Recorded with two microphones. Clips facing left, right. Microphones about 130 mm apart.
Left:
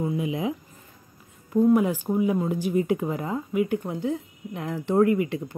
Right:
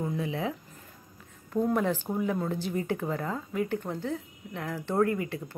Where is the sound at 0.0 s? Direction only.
10° left (ahead or behind).